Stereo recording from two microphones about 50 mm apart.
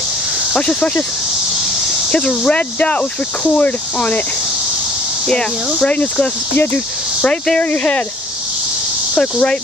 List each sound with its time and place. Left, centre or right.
0.6 s speech: centre
2.0 s speech: centre
5.9 s speech: left
6.5 s speech: left
7.2 s speech: centre
7.7 s speech: left
9.2 s speech: centre